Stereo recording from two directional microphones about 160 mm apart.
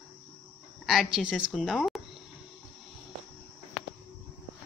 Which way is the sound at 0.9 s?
Centre (ahead or behind).